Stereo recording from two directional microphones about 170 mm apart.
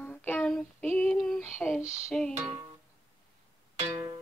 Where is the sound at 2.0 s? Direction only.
5° left (ahead or behind).